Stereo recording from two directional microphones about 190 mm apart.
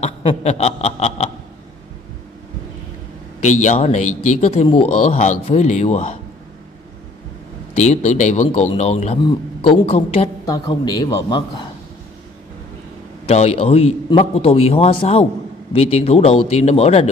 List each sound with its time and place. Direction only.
0.0 s chuckle: 35° left (ahead or behind)
3.4 s a man's voice: 40° left (ahead or behind)
7.7 s a man's voice: 35° left (ahead or behind)
10.4 s a man's voice: 20° left (ahead or behind)
13.3 s a man's voice: 35° left (ahead or behind)